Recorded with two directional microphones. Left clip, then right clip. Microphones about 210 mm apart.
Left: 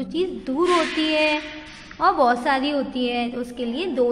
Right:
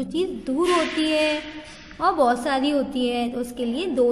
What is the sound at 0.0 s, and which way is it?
A woman's voice, 15° right (ahead or behind).